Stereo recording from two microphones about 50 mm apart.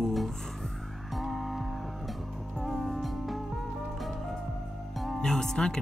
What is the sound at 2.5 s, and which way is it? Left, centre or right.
Music, centre.